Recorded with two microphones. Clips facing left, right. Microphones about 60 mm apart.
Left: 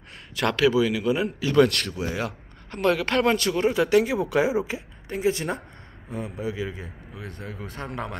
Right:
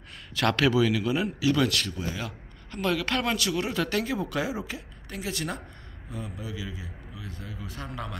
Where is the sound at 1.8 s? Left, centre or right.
Left.